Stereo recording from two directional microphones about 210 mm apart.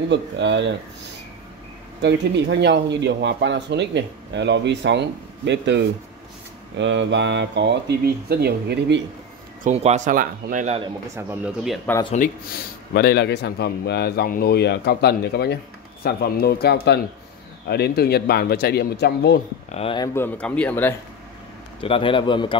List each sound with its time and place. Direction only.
0.1 s speech: 55° right (ahead or behind)
2.0 s speech: 55° right (ahead or behind)
9.6 s speech: 35° right (ahead or behind)
11.1 s speech: 10° right (ahead or behind)
12.9 s a man's voice: 50° left (ahead or behind)
19.7 s a man's voice: 25° left (ahead or behind)
20.2 s a man's voice: 5° left (ahead or behind)
21.8 s a man's voice: 25° left (ahead or behind)